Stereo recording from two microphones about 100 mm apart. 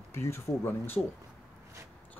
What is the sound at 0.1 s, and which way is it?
Speech, 25° left (ahead or behind).